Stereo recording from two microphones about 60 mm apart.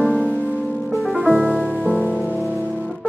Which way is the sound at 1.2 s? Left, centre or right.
Centre.